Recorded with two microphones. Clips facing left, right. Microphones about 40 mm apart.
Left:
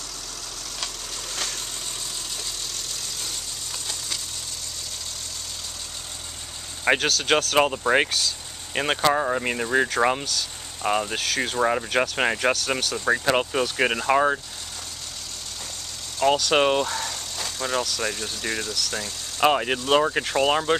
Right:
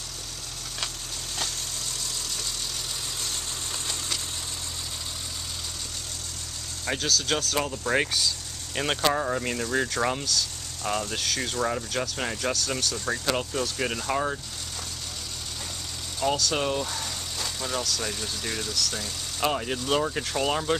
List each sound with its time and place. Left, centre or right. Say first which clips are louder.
6.8 s speech: left 6 dB; left
7.8 s speech: left 4 dB; left
16.3 s speech: left 7 dB; left
16.8 s speech: left 4 dB; centre
19.4 s speech: left 6 dB; left